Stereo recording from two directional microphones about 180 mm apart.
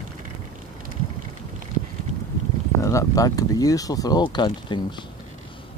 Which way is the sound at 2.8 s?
15° left (ahead or behind).